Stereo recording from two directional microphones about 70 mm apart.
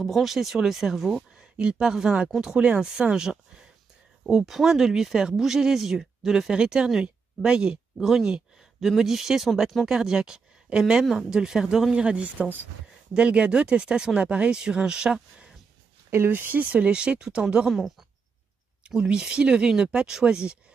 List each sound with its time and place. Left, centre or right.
0.0 s speech: centre
9.8 s speech: centre
16.3 s speech: right
16.7 s speech: centre
18.9 s speech: centre